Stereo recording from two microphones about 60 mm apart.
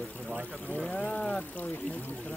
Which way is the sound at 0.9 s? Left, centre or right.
Centre.